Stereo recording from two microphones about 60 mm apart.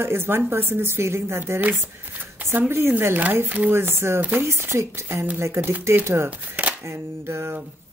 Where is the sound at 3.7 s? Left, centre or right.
Right.